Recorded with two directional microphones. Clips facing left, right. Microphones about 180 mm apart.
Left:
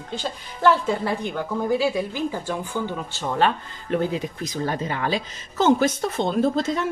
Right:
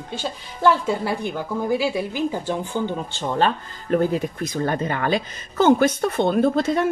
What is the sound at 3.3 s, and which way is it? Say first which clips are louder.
Speech: even; 35° right (ahead or behind).